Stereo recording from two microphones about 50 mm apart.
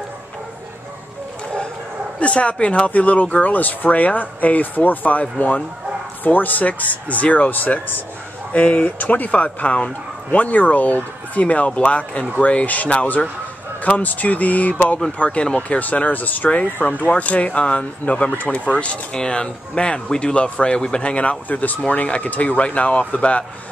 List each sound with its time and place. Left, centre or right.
2.1 s speech: left
6.2 s speech: left